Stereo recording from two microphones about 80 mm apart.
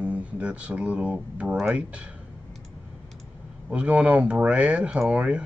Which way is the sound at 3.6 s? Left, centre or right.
Centre.